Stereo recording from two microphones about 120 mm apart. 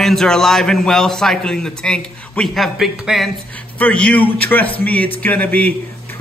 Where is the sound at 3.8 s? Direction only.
10° left (ahead or behind).